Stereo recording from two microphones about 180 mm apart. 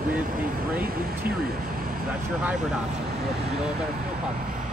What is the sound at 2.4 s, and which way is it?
Speech, 5° right (ahead or behind).